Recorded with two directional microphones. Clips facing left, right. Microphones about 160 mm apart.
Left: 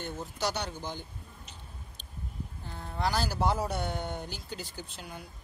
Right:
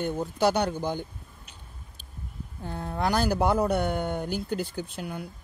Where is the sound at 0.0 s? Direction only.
55° right (ahead or behind).